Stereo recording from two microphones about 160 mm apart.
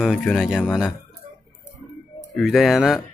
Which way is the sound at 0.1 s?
Centre (ahead or behind).